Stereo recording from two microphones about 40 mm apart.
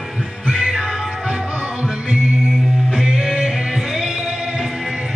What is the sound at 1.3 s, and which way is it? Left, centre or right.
Music, right.